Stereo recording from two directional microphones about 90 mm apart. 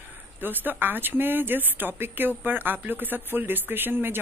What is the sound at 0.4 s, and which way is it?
Speech, 20° right (ahead or behind).